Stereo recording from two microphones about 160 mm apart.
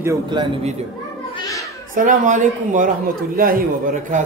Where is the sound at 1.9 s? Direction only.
55° right (ahead or behind).